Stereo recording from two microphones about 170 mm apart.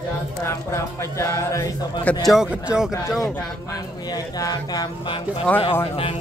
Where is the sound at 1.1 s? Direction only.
15° left (ahead or behind).